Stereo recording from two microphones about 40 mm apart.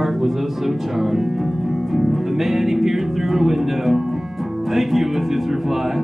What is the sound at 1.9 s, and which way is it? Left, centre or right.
Speech, centre.